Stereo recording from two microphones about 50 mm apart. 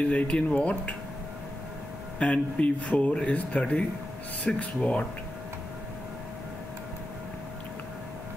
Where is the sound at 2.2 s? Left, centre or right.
Left.